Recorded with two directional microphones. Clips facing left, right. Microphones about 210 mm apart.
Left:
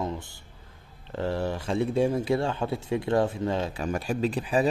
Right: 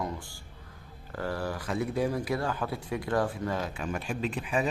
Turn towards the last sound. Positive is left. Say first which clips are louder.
# left 5 dB
turn(degrees=35)  # may be behind; listen again after turning